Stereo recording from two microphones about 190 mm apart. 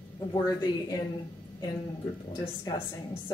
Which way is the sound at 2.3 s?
20° left (ahead or behind).